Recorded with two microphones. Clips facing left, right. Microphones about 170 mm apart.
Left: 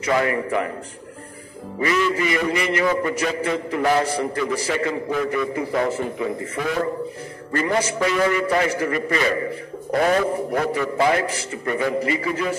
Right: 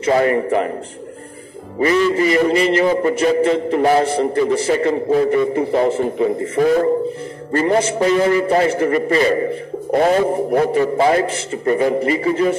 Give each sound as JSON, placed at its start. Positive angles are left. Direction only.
{"t": 0.0, "sound": "a man's voice", "side_deg": -35}
{"t": 1.8, "sound": "a man's voice", "side_deg": -30}